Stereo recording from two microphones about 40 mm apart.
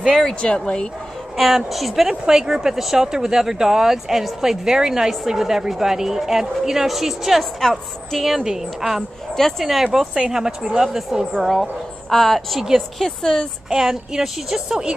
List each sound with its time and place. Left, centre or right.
0.1 s a woman's voice: centre
1.3 s a woman's voice: centre
2.0 s a woman's voice: centre
10.3 s speech: centre
11.3 s a woman's voice: centre
12.5 s a woman's voice: centre
13.0 s a woman's voice: centre
13.7 s speech: centre